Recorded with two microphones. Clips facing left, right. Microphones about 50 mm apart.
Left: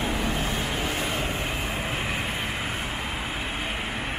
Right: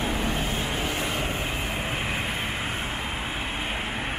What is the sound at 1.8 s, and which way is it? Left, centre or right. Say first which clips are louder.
Vehicle: even; right.